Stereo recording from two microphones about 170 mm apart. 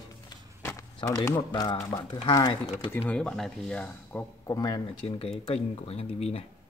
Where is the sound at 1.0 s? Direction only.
20° left (ahead or behind).